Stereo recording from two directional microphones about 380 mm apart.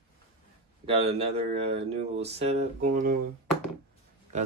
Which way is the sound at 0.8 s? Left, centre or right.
Centre.